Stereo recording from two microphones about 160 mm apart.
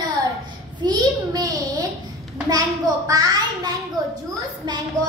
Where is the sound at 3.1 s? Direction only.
20° right (ahead or behind).